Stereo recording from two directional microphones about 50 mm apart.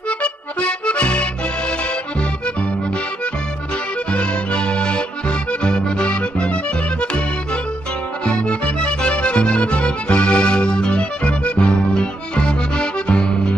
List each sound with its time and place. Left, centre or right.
0.2 s accordion: left
4.1 s accordion: left
8.3 s music: left